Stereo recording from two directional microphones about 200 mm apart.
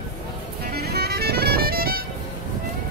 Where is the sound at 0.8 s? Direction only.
50° right (ahead or behind).